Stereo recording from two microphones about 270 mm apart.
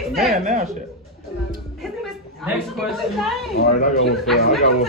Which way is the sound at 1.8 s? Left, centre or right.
Centre.